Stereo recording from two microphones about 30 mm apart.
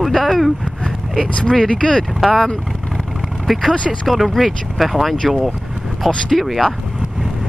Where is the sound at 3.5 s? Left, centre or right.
Centre.